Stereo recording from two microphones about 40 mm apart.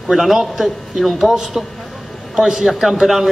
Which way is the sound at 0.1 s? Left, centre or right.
Centre.